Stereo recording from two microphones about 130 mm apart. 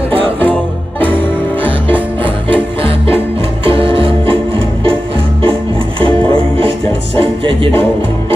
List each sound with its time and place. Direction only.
1.0 s music: 40° right (ahead or behind)
3.6 s music: 45° right (ahead or behind)
5.4 s music: 40° right (ahead or behind)